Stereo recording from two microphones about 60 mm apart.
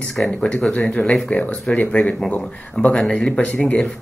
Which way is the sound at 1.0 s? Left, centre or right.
Centre.